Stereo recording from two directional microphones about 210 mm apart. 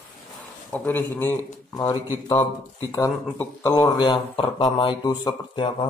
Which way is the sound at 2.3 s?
20° left (ahead or behind).